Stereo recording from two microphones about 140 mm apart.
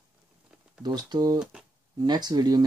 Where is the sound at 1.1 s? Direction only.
30° right (ahead or behind).